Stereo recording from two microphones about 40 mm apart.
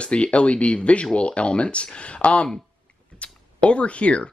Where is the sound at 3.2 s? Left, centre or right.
Left.